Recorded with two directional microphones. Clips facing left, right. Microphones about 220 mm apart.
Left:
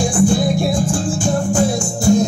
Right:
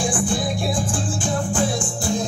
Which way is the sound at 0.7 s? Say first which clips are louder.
Left 6 dB; 45° left (ahead or behind).